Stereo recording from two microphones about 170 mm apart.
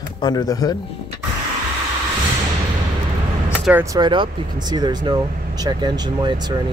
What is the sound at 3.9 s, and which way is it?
Speech, 25° right (ahead or behind).